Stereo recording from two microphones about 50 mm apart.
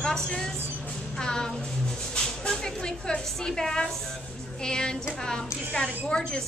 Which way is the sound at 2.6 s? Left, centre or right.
Centre.